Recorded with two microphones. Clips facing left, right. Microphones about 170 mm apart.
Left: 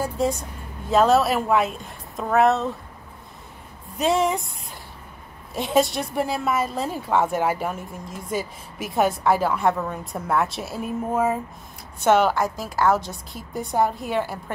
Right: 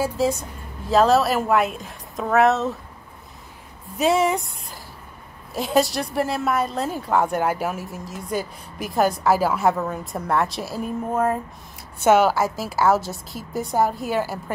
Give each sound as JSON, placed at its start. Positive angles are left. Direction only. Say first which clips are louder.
{"t": 0.0, "sound": "a woman's voice", "louder": "right 2 dB", "side_deg": 0}
{"t": 4.0, "sound": "a woman's voice", "louder": "right 2 dB", "side_deg": 0}